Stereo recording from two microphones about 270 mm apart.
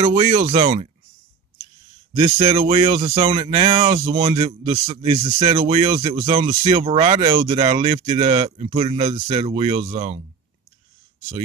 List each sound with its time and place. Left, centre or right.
0.0 s speech: right
2.1 s speech: centre